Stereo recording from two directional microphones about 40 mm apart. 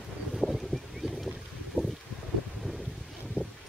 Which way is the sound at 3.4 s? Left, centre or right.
Right.